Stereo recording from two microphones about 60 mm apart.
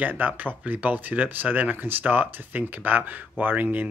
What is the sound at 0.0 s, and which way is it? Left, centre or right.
Speech, right.